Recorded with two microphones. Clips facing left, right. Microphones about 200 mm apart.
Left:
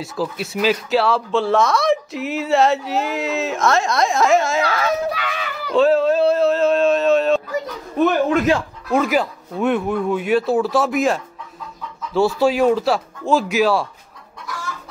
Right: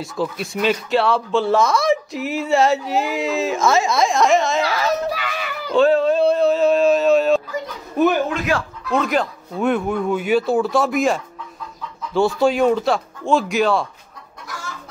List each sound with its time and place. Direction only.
0.0 s speech: centre (ahead or behind)
4.6 s a sound: 5° right (ahead or behind)
8.9 s speech: 5° left (ahead or behind)